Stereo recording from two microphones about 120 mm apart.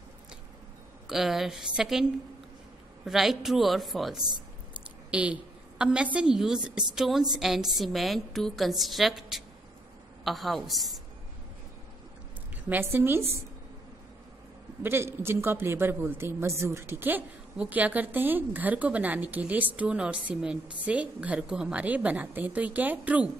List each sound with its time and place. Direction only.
1.0 s a woman's voice: 5° right (ahead or behind)
3.1 s a woman's voice: 5° right (ahead or behind)
12.6 s speech: 15° right (ahead or behind)
14.8 s speech: 20° right (ahead or behind)